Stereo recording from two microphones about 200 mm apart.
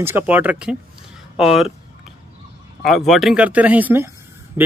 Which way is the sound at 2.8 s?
Centre (ahead or behind).